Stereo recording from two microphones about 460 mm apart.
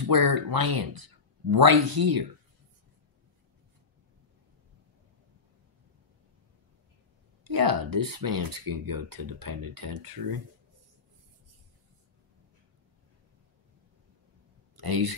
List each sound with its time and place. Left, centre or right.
0.0 s speech: right
7.4 s speech: right
14.8 s speech: right